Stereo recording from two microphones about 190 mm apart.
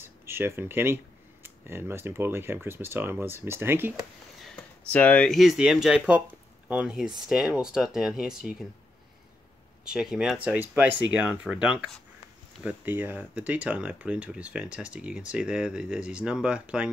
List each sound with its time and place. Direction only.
0.0 s a sound: 10° right (ahead or behind)
1.4 s speech: 10° right (ahead or behind)
4.4 s speech: 5° left (ahead or behind)
9.8 s speech: 5° right (ahead or behind)